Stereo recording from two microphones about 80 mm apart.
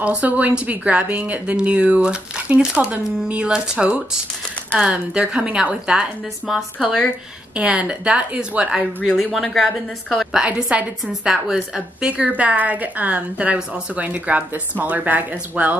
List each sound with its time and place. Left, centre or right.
0.0 s speech: centre
7.5 s speech: centre
9.1 s speech: centre
10.3 s speech: centre
12.1 s a woman's voice: centre